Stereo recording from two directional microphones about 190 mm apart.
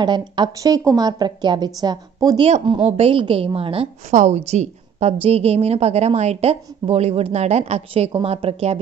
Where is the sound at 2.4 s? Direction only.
30° right (ahead or behind).